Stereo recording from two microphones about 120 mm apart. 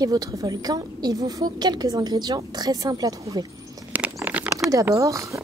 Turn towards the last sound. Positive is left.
turn(degrees=-25)  # may be behind; listen again after turning